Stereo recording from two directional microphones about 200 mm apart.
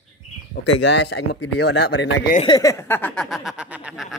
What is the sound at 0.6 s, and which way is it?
Speech, 60° left (ahead or behind).